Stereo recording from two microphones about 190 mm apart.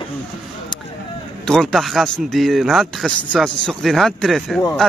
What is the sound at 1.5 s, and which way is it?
Speech, centre (ahead or behind).